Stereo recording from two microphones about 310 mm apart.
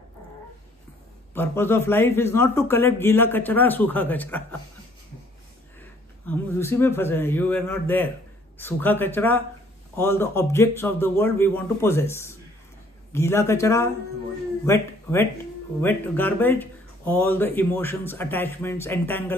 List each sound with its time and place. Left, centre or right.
1.3 s speech: centre
5.8 s speech: centre